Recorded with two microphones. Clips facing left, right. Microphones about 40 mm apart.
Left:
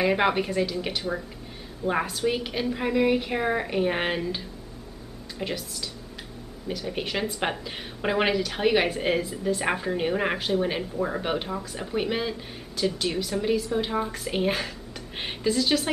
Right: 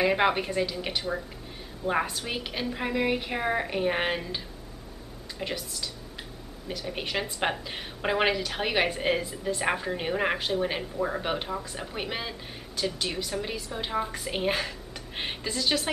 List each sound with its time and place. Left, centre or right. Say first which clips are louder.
0.0 s a woman's voice: left 1 dB; centre